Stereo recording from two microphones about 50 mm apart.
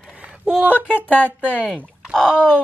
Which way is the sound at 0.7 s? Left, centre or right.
Left.